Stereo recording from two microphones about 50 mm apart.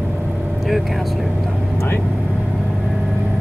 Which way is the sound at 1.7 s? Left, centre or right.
Left.